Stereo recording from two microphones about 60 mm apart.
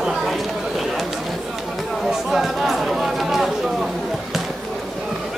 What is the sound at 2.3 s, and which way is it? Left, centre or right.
Chatter, centre.